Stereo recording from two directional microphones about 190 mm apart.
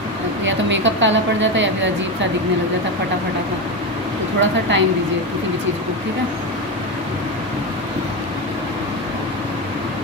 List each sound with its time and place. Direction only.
0.5 s a woman's voice: 75° right (ahead or behind)
4.4 s a woman's voice: 75° right (ahead or behind)